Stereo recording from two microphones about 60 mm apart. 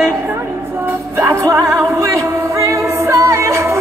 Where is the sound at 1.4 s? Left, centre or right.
Right.